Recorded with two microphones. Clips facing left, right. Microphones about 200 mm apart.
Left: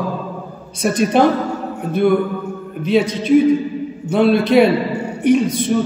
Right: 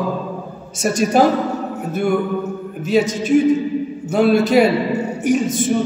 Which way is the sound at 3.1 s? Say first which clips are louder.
Left 2 dB; 50° right (ahead or behind).